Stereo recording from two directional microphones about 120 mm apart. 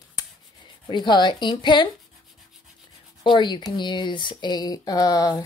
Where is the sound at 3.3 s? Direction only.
40° left (ahead or behind).